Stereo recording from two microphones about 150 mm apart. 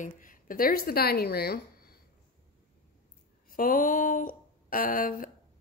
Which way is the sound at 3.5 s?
65° left (ahead or behind).